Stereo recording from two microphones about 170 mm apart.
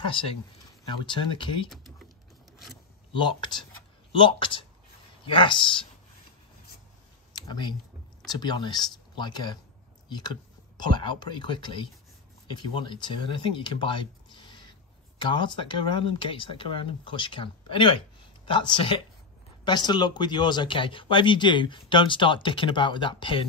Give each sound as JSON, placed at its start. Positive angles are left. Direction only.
{"t": 0.8, "sound": "speech", "side_deg": 30}
{"t": 3.1, "sound": "speech", "side_deg": 25}
{"t": 7.3, "sound": "a sound", "side_deg": 25}
{"t": 8.3, "sound": "speech", "side_deg": 25}